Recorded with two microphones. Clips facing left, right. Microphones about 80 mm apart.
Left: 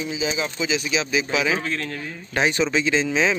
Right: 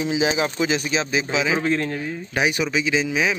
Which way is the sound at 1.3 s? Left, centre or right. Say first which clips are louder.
Right 5 dB; right.